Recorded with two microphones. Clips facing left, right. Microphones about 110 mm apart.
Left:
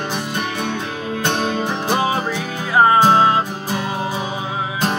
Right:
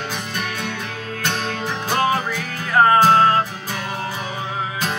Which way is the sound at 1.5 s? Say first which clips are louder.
Left 4 dB; 15° left (ahead or behind).